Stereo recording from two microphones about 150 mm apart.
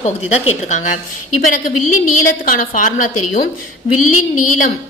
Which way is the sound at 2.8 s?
60° left (ahead or behind).